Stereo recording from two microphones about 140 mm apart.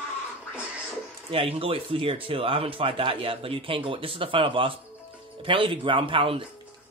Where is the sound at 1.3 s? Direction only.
40° right (ahead or behind).